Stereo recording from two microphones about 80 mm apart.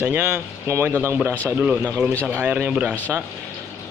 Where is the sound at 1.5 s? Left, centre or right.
Centre.